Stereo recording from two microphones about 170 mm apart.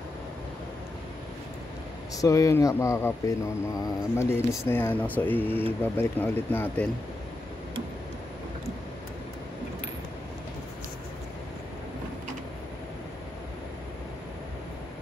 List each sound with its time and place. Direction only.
2.1 s speech: 20° left (ahead or behind)